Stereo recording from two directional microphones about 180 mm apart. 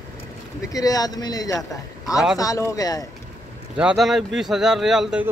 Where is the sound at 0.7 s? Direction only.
20° left (ahead or behind).